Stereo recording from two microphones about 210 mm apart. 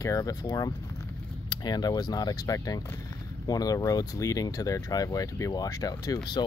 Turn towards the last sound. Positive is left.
turn(degrees=20)  # may be behind; listen again after turning